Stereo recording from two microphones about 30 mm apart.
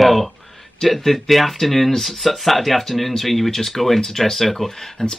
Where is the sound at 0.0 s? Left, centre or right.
Centre.